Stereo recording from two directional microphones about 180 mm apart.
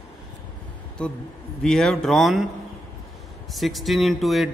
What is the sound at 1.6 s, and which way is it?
Speech, centre (ahead or behind).